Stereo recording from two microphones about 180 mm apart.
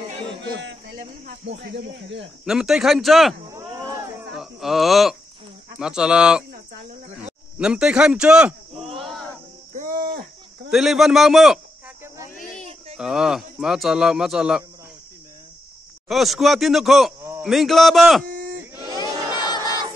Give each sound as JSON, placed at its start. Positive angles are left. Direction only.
{"t": 0.4, "sound": "music", "side_deg": -80}
{"t": 1.5, "sound": "speech", "side_deg": -65}
{"t": 2.4, "sound": "a man's voice", "side_deg": -5}
{"t": 4.4, "sound": "a man's voice", "side_deg": 0}
{"t": 7.2, "sound": "a sound", "side_deg": -5}
{"t": 9.8, "sound": "a sound", "side_deg": -50}
{"t": 10.7, "sound": "a man's voice", "side_deg": 0}
{"t": 12.4, "sound": "a sound", "side_deg": 45}
{"t": 12.9, "sound": "a man's voice", "side_deg": -5}
{"t": 16.1, "sound": "a man's voice", "side_deg": 0}
{"t": 18.3, "sound": "sheep", "side_deg": -50}
{"t": 19.3, "sound": "crowd", "side_deg": 25}